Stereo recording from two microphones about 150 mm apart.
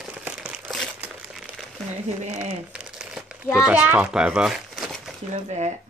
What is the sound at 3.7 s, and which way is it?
Speech, 10° right (ahead or behind).